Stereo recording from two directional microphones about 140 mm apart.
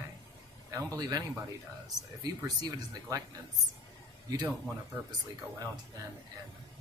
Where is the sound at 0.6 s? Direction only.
25° right (ahead or behind).